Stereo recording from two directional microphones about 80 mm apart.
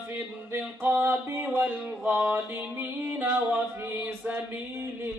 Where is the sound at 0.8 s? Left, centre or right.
Right.